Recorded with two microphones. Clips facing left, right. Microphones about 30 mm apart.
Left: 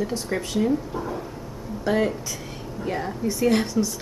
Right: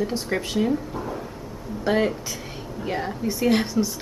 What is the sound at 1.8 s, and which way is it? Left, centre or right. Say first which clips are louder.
A woman's voice: right 1 dB; centre.